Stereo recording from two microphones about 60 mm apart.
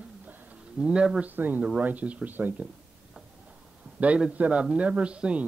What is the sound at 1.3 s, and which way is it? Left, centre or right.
Speech, right.